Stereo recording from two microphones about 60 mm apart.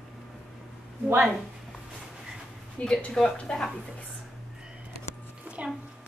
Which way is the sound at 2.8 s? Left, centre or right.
Centre.